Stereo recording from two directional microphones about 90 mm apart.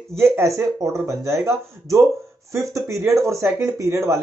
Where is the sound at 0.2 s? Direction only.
30° right (ahead or behind).